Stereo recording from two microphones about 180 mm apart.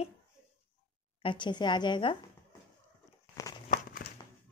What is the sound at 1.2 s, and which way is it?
Speech, 25° left (ahead or behind).